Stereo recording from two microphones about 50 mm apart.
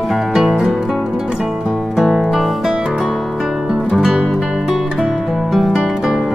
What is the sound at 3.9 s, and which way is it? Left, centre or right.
Music, centre.